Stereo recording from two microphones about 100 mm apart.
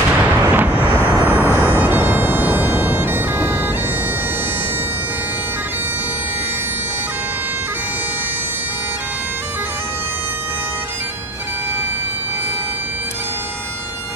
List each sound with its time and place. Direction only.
0.1 s music: 15° right (ahead or behind)